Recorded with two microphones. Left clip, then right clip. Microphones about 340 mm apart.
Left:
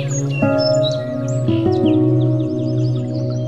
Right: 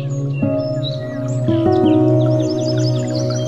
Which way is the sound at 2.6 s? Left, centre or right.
Right.